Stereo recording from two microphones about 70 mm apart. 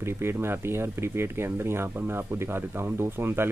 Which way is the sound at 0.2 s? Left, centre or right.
Right.